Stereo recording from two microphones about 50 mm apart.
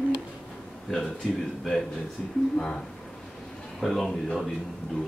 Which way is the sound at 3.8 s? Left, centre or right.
Centre.